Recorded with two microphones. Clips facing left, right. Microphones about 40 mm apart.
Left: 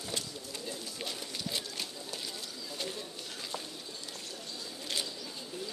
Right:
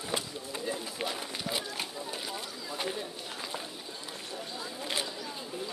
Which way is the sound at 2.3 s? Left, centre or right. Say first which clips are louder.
Right 4 dB; right.